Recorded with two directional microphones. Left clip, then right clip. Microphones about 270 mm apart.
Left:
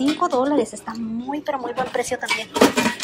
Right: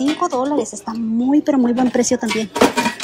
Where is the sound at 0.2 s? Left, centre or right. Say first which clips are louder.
Right 1 dB; centre.